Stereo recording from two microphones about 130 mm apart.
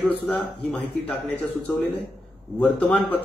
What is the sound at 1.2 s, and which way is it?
Speech, 10° left (ahead or behind).